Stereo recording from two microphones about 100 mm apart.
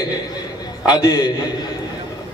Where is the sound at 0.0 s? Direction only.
40° left (ahead or behind).